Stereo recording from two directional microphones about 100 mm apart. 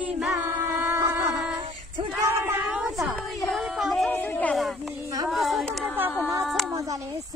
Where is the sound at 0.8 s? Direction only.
30° right (ahead or behind).